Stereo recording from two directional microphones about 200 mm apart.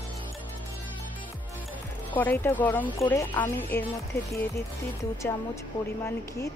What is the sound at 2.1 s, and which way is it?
Speech, 10° left (ahead or behind).